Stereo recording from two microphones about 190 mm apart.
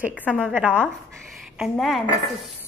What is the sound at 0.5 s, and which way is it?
A woman's voice, 10° right (ahead or behind).